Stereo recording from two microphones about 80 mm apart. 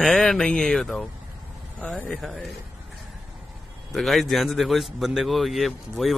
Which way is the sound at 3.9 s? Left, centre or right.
Centre.